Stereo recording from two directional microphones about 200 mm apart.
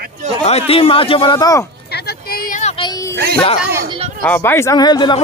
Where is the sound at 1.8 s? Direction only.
55° left (ahead or behind); by 2.9 s 35° left (ahead or behind).